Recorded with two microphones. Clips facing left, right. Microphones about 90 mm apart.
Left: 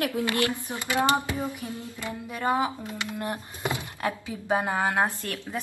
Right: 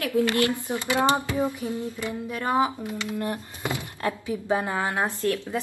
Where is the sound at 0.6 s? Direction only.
20° right (ahead or behind).